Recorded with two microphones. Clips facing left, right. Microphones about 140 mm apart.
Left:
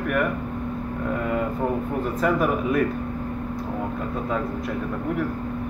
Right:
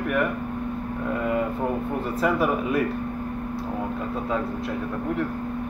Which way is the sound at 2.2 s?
5° right (ahead or behind).